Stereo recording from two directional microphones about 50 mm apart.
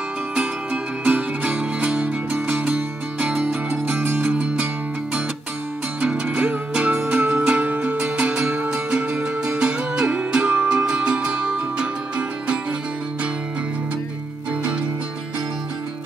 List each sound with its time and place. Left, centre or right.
1.0 s music: right
3.7 s music: right
5.9 s music: right